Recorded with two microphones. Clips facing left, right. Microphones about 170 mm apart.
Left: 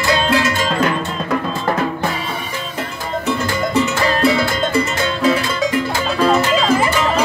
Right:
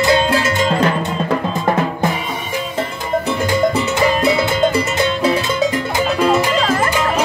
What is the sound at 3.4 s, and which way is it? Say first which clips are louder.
Music: right 2 dB; 15° right (ahead or behind).